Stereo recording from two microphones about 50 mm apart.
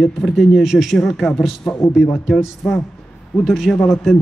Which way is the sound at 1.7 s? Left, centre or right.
Centre.